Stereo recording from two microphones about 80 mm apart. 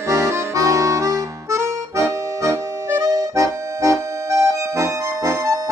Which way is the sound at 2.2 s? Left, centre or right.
Right.